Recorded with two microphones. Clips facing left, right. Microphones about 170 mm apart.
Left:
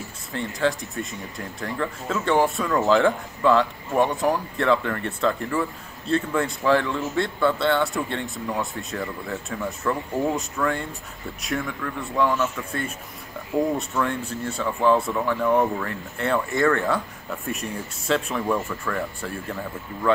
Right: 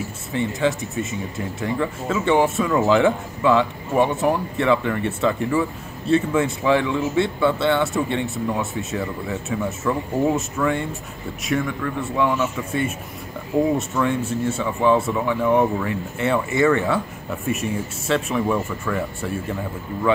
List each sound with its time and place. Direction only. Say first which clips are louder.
0.3 s speech: right 3 dB; 5° right (ahead or behind)